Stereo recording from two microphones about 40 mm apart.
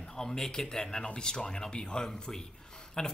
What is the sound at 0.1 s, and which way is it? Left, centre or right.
Speech, centre.